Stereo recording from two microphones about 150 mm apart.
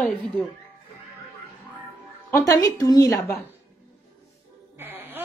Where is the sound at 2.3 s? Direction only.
25° left (ahead or behind).